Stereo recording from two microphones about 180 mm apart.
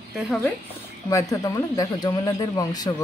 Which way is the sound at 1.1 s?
20° left (ahead or behind).